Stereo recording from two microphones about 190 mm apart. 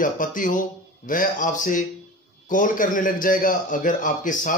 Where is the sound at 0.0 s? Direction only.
45° left (ahead or behind).